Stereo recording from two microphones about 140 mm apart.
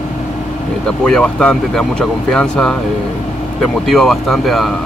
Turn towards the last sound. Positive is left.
turn(degrees=0)  # may be behind; listen again after turning